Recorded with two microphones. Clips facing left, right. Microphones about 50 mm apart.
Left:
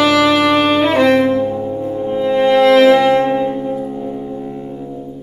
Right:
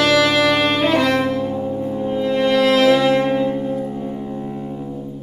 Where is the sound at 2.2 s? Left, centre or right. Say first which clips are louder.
Left 5 dB; left.